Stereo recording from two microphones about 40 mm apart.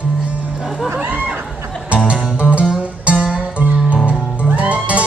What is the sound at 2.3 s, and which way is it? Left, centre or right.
Music, right.